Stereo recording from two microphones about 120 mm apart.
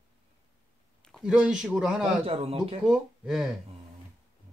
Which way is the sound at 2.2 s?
55° right (ahead or behind).